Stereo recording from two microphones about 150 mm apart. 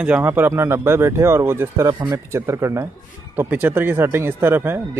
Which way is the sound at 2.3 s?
15° right (ahead or behind).